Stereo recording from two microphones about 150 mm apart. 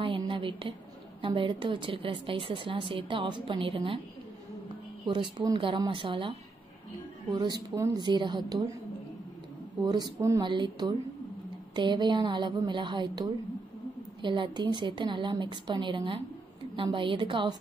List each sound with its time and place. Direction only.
0.0 s a sound: 35° right (ahead or behind)
1.2 s a woman's voice: 35° right (ahead or behind)
5.0 s a woman's voice: 30° right (ahead or behind)
9.8 s a woman's voice: 25° right (ahead or behind)